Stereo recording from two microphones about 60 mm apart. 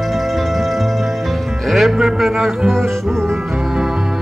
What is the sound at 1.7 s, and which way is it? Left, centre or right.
Music, centre.